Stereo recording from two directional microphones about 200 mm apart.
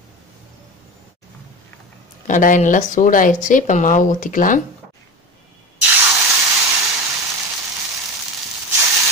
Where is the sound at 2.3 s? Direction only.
40° left (ahead or behind).